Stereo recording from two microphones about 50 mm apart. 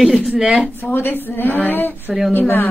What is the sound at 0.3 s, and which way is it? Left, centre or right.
Speech, right.